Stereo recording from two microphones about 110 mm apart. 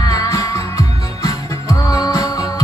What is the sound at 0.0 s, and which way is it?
Music, 35° left (ahead or behind).